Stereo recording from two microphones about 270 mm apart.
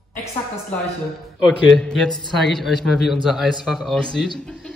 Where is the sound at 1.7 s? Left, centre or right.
Centre.